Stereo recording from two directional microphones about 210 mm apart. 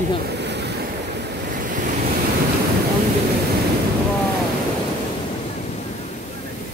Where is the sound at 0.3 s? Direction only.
55° right (ahead or behind).